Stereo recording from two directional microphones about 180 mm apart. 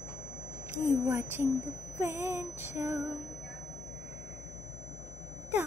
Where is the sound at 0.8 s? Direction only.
15° right (ahead or behind).